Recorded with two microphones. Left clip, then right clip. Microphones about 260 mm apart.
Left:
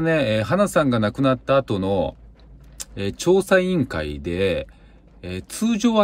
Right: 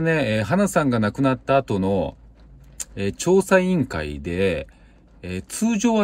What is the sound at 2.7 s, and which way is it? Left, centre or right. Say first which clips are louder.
Speech: right 1 dB; left.